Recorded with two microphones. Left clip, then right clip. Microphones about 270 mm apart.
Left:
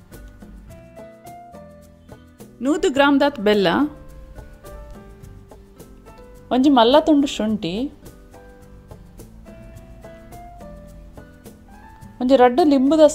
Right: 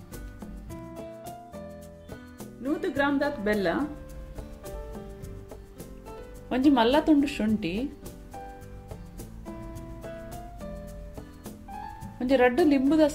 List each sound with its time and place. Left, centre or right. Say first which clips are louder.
2.6 s speech: left 10 dB; left
6.5 s speech: left 8 dB; left
12.2 s speech: left 8 dB; left